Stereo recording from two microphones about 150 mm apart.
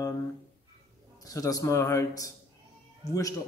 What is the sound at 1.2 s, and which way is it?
A man's voice, 25° left (ahead or behind).